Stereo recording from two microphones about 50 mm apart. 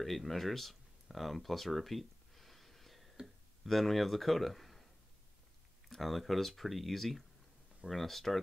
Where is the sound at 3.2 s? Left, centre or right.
Right.